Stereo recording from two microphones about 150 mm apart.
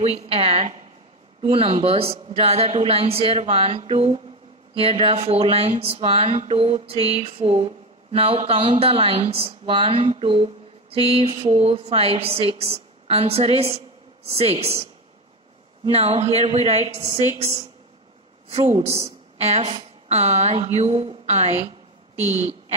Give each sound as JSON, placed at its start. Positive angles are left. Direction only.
{"t": 0.3, "sound": "a woman's voice", "side_deg": -45}
{"t": 15.9, "sound": "a woman's voice", "side_deg": -45}